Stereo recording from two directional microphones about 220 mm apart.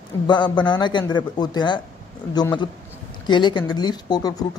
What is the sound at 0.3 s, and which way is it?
Speech, 20° left (ahead or behind).